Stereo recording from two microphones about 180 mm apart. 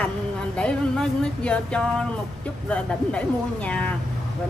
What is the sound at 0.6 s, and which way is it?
A woman's voice, 5° left (ahead or behind).